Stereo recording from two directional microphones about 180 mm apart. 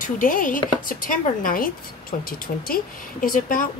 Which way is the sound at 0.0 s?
50° left (ahead or behind).